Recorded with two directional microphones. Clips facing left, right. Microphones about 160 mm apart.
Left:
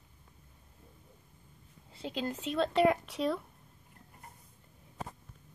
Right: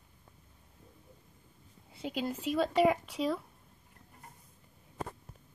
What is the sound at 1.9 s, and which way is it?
A woman's voice, 10° right (ahead or behind).